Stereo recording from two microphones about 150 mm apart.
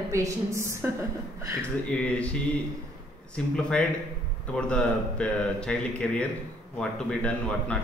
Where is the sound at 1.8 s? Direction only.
10° left (ahead or behind).